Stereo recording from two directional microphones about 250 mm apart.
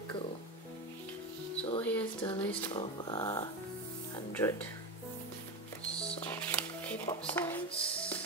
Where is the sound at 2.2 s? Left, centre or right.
Left.